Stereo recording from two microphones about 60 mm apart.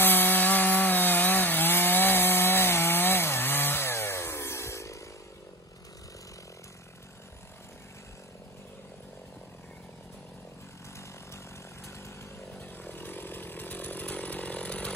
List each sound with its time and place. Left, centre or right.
0.0 s wood: left
12.8 s chainsaw: left